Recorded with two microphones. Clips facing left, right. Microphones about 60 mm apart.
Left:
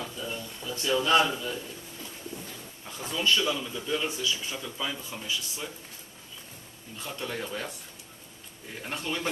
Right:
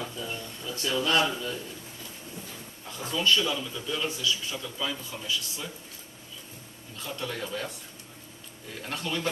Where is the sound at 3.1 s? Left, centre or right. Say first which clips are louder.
Right 1 dB; centre.